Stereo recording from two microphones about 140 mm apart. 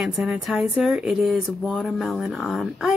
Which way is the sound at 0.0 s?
5° right (ahead or behind).